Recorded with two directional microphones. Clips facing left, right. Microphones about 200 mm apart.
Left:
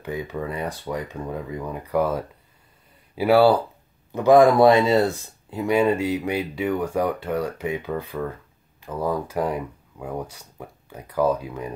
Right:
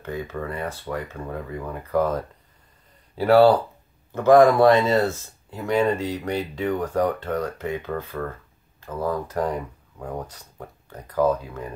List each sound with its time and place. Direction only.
0.0 s speech: 15° left (ahead or behind)